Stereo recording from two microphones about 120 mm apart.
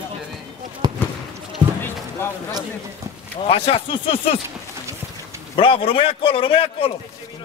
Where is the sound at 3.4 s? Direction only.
50° left (ahead or behind).